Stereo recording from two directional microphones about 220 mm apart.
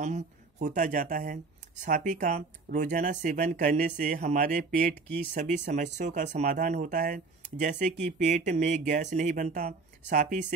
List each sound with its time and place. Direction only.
0.0 s speech: 30° right (ahead or behind)